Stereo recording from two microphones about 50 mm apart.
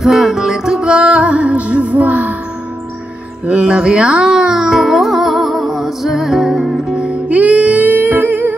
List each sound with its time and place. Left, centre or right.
0.0 s music: centre; by 2.3 s right
3.4 s music: centre
7.2 s music: right